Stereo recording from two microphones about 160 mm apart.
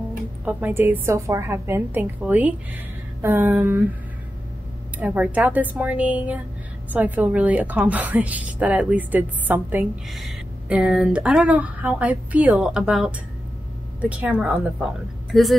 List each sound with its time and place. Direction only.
0.5 s a woman's voice: 10° right (ahead or behind)
4.9 s a woman's voice: 10° right (ahead or behind)